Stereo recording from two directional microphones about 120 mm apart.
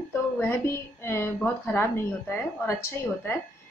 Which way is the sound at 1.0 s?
20° left (ahead or behind).